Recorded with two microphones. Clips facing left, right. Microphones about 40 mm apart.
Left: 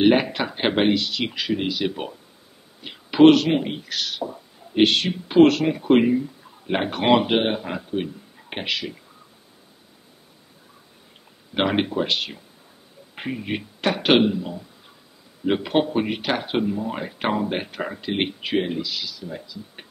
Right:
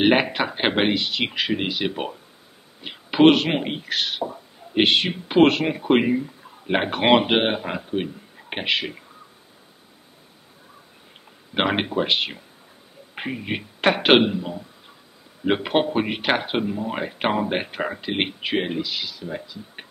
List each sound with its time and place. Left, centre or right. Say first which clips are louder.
0.0 s speech: even; right
8.7 s speech: right 3 dB; right
11.5 s a man's voice: even; centre
13.7 s speech: right 2 dB; right
16.5 s speech: left 1 dB; centre
16.9 s speech: right 1 dB; right